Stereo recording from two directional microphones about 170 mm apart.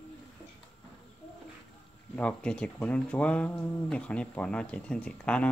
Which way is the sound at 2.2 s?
5° left (ahead or behind).